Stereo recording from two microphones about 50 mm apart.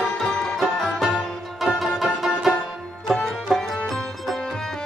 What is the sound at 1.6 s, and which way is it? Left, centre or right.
Music, centre.